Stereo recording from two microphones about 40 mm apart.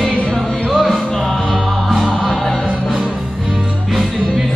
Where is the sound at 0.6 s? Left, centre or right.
Centre.